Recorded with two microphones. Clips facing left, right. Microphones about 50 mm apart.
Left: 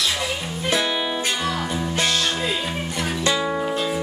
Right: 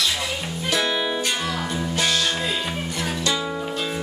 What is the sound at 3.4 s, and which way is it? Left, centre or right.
Music, left.